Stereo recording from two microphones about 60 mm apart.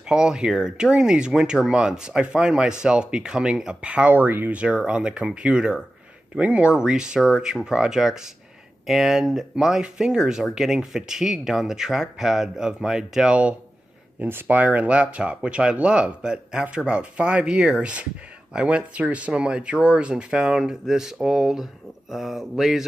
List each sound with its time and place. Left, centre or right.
0.1 s speech: centre; by 4.6 s right
4.6 s speech: centre
14.2 s speech: right; by 22.8 s centre